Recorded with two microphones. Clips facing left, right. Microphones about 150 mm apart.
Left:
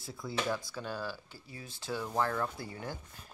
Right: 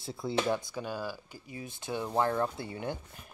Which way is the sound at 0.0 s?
25° right (ahead or behind).